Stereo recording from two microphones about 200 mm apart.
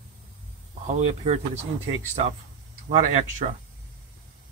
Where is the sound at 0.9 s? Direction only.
35° right (ahead or behind).